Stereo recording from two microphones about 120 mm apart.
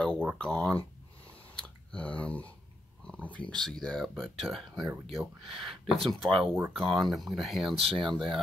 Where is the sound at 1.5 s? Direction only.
10° left (ahead or behind).